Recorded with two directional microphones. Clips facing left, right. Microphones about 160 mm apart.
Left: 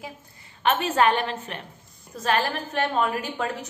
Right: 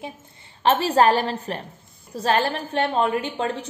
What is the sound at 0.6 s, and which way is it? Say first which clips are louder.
A woman's voice: right 4 dB; 35° right (ahead or behind).